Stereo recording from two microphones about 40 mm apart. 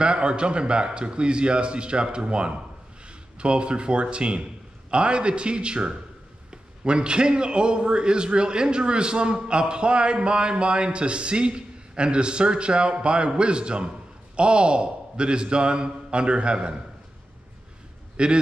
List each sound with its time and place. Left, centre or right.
0.0 s a man's voice: right
18.1 s a man's voice: right